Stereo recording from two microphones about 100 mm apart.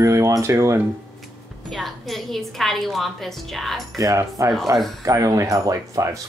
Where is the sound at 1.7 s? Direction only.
Centre (ahead or behind).